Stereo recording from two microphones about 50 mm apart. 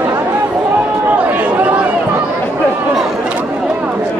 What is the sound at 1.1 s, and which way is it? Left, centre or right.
Chatter, right.